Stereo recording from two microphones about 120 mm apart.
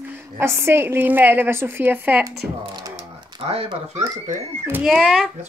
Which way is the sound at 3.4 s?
55° right (ahead or behind).